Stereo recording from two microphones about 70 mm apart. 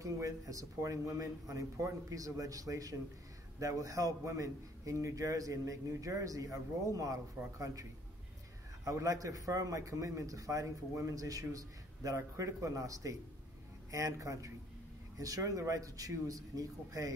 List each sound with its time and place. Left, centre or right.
0.0 s a man's voice: right
8.8 s a man's voice: right